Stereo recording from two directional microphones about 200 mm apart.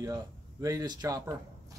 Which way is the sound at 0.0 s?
15° right (ahead or behind).